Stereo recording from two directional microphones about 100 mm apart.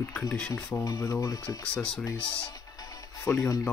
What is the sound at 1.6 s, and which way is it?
Speech, 10° left (ahead or behind).